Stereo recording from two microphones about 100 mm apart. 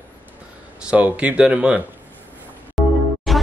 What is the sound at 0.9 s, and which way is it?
Speech, 15° right (ahead or behind).